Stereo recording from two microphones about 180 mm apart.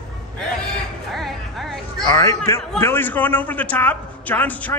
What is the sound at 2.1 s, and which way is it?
A man's voice, 20° left (ahead or behind).